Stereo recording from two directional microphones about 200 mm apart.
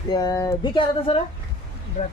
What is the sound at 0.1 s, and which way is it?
Speech, 20° left (ahead or behind).